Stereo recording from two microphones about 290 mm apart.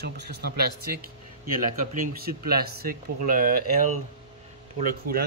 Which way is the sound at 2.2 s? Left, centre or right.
Right.